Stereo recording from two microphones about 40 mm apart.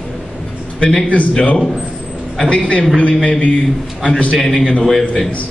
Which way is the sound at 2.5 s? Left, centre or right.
Left.